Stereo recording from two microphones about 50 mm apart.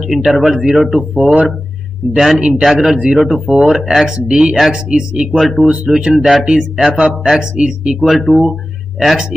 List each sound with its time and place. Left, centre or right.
0.0 s speech: centre
1.1 s speech: right
2.1 s speech: centre
5.4 s speech: centre
6.4 s speech: centre
7.5 s speech: centre